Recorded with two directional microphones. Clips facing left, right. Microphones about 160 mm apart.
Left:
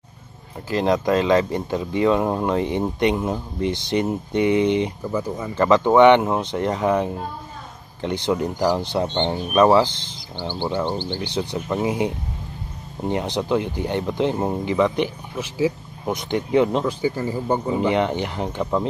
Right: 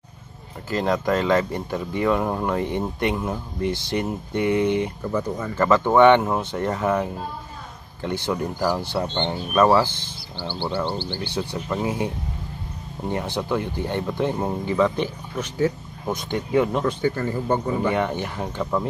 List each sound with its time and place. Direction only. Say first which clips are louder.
0.7 s speech: left 3 dB; 20° left (ahead or behind)
5.1 s speech: even; 10° left (ahead or behind)
16.1 s speech: left 3 dB; 20° left (ahead or behind)
16.8 s speech: even; 10° left (ahead or behind)